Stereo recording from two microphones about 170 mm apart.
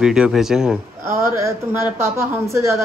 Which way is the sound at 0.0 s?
5° right (ahead or behind).